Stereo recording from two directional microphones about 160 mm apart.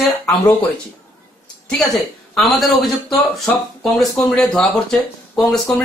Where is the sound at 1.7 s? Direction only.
5° left (ahead or behind).